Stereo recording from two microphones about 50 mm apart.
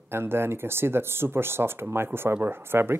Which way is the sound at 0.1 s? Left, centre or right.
Right.